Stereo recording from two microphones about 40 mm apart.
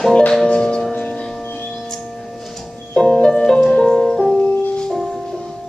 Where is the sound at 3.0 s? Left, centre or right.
Left.